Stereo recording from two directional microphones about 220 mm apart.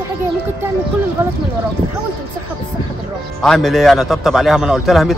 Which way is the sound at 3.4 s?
Centre (ahead or behind).